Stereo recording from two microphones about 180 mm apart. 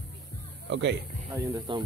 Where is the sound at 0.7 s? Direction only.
75° right (ahead or behind).